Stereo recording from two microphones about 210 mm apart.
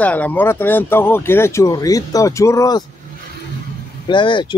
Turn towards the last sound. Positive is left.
turn(degrees=25)  # may be behind; listen again after turning